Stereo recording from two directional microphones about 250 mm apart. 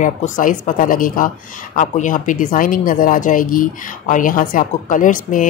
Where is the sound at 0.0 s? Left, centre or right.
Left.